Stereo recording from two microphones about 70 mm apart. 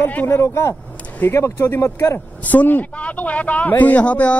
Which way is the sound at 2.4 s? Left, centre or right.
Left.